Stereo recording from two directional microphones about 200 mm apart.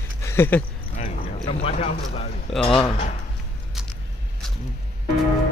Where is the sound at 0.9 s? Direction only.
35° left (ahead or behind).